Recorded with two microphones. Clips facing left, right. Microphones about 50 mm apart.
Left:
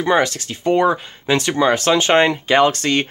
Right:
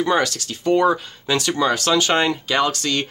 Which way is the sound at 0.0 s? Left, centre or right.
Left.